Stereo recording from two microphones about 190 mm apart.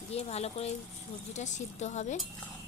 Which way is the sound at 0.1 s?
35° left (ahead or behind).